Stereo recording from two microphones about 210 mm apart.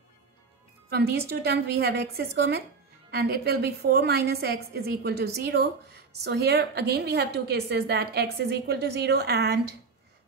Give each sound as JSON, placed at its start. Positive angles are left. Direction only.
{"t": 0.8, "sound": "a woman's voice", "side_deg": -50}